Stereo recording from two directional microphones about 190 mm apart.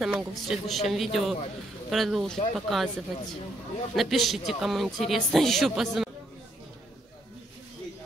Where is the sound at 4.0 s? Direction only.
Centre (ahead or behind).